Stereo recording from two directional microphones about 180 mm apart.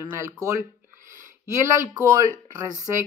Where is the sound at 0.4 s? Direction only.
15° right (ahead or behind).